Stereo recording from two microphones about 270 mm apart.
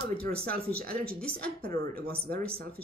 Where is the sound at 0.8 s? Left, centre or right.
Right.